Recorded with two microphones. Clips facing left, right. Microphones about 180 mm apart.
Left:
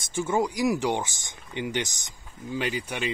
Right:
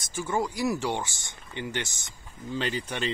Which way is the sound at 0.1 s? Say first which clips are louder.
Left 3 dB; 20° left (ahead or behind).